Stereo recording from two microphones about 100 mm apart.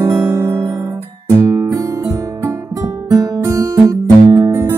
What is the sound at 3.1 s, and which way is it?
Guitar, 35° right (ahead or behind).